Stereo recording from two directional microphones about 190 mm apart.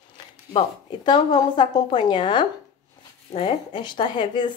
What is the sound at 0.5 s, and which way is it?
Speech, 25° left (ahead or behind).